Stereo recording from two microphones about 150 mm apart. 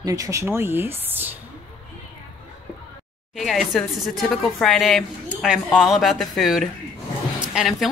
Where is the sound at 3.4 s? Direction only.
Centre (ahead or behind).